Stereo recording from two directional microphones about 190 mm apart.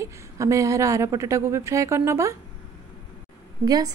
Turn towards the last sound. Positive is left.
turn(degrees=-20)  # may be behind; listen again after turning